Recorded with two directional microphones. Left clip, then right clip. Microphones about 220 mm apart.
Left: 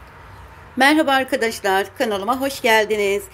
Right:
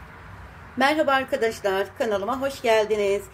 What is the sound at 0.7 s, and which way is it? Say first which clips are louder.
Speech: left 5 dB; 20° left (ahead or behind).